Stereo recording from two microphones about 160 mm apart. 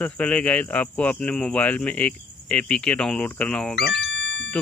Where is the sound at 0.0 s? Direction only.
10° left (ahead or behind).